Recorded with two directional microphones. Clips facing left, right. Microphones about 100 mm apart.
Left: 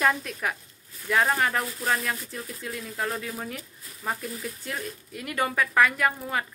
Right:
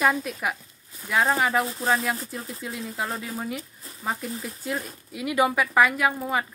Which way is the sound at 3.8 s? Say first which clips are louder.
Right 3 dB; 30° right (ahead or behind).